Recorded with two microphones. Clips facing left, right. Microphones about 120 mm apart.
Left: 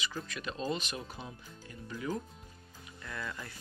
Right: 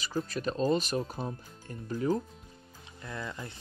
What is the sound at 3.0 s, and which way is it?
Speech, 25° right (ahead or behind).